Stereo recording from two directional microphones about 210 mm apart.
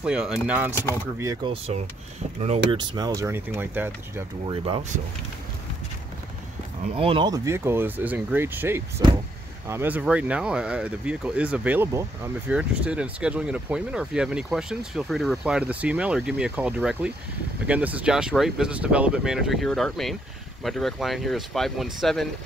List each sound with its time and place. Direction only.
0.0 s speech: 5° right (ahead or behind)
1.2 s speech: 20° right (ahead or behind)
4.5 s speech: 25° right (ahead or behind)
7.0 s speech: 25° right (ahead or behind); by 22.3 s centre (ahead or behind)